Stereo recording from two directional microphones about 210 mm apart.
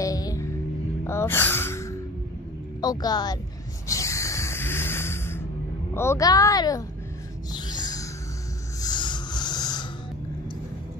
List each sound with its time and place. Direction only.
0.0 s music: 15° left (ahead or behind)
2.8 s speech: 20° left (ahead or behind)
3.8 s music: 15° left (ahead or behind)
5.9 s a woman's voice: 15° left (ahead or behind)
7.5 s music: 20° left (ahead or behind)
8.8 s a sound: 20° left (ahead or behind)